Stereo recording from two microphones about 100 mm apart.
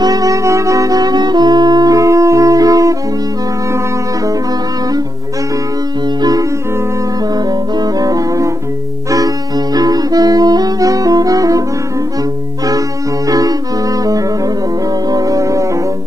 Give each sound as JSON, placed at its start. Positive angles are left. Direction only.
{"t": 0.0, "sound": "saxophone", "side_deg": -40}
{"t": 7.3, "sound": "music", "side_deg": -40}
{"t": 9.8, "sound": "saxophone", "side_deg": -40}
{"t": 13.3, "sound": "music", "side_deg": -40}
{"t": 15.0, "sound": "music", "side_deg": -40}